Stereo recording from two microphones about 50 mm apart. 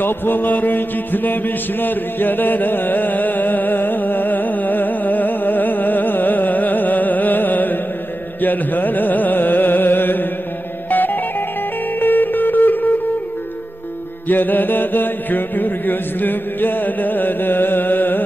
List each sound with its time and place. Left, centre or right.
0.0 s mantra: left
8.4 s music: left
14.2 s mantra: left